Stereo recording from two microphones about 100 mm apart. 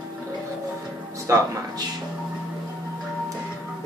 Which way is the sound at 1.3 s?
30° right (ahead or behind).